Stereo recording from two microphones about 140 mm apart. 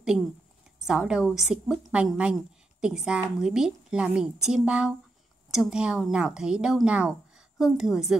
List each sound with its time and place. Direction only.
0.8 s a woman's voice: 5° right (ahead or behind)